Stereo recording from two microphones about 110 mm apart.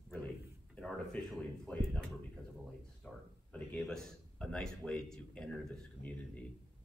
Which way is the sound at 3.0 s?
10° left (ahead or behind).